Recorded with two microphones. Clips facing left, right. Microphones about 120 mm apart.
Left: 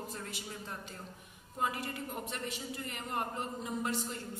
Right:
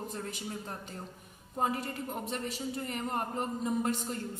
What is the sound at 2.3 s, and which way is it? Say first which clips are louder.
Speech: right 5 dB; 40° right (ahead or behind).